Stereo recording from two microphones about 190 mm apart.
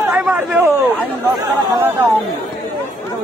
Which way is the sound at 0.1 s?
5° right (ahead or behind).